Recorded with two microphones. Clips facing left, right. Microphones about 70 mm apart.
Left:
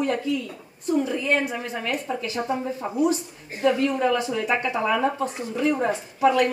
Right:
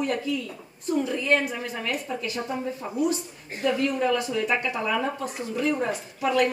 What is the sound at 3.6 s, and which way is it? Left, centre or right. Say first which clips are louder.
A woman's voice: left 3 dB; centre.